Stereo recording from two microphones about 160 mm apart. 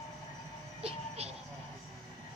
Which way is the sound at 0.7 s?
40° right (ahead or behind).